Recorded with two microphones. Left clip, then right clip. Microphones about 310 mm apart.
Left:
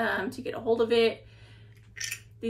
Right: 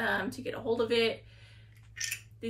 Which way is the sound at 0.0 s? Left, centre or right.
Centre.